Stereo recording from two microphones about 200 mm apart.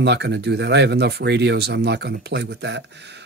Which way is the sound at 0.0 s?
60° right (ahead or behind).